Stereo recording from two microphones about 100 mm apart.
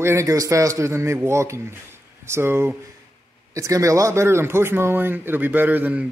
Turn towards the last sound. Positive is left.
turn(degrees=-15)  # may be behind; listen again after turning